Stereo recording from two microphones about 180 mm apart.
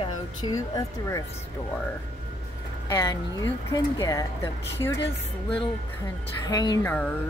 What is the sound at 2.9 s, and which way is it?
Speech, 20° left (ahead or behind).